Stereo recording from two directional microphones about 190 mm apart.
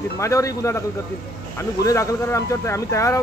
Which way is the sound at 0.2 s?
15° left (ahead or behind).